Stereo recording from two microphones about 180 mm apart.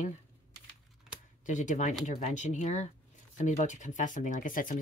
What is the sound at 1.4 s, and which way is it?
Speech, 45° left (ahead or behind).